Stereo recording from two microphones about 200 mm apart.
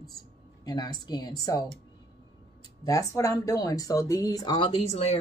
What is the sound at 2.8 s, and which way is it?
Speech, 15° left (ahead or behind).